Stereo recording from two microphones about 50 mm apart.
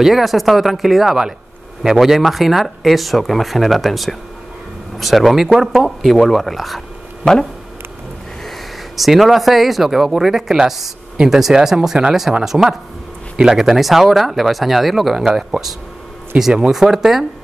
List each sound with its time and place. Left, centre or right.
0.0 s speech: centre
7.2 s speech: centre
8.5 s speech: centre